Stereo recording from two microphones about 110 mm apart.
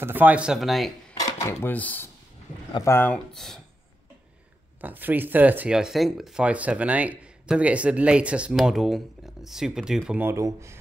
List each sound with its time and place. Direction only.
0.0 s speech: 15° right (ahead or behind)
0.6 s speech: centre (ahead or behind)
1.1 s dishes: 25° left (ahead or behind)
1.7 s speech: 15° left (ahead or behind)
3.3 s speech: centre (ahead or behind)
4.8 s speech: 15° right (ahead or behind)
10.2 s speech: 25° right (ahead or behind)